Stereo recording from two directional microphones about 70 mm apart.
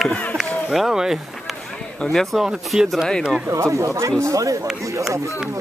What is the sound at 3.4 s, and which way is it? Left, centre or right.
Speech, right.